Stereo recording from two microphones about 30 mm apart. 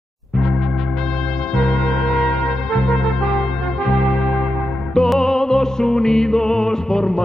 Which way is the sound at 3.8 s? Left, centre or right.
Centre.